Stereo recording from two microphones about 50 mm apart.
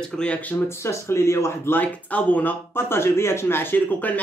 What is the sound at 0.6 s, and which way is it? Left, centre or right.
Speech, left.